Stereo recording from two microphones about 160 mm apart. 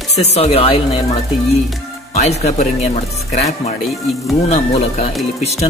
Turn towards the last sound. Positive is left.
turn(degrees=40)  # may be behind; listen again after turning